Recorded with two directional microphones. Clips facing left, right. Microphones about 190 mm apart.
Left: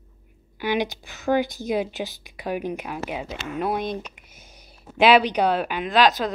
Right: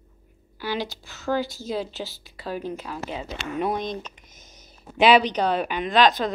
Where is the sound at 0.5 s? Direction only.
15° left (ahead or behind).